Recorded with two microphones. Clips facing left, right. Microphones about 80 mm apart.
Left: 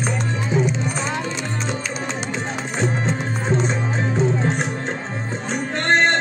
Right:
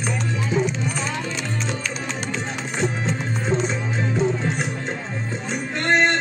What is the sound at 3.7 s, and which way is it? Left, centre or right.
Music, left.